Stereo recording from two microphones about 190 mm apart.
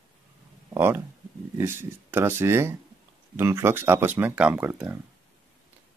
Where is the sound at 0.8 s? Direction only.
10° right (ahead or behind).